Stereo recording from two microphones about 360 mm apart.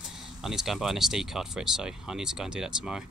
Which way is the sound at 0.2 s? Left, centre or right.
Centre.